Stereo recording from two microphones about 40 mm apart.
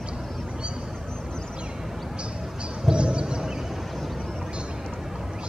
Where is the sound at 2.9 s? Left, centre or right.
Right.